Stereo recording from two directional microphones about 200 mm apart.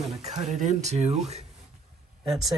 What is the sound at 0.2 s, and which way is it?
Speech, 35° right (ahead or behind).